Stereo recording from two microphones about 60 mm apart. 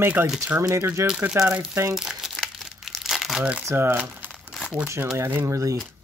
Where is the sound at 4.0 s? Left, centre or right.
Right.